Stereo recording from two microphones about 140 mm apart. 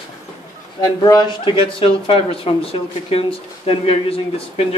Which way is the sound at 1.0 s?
30° left (ahead or behind).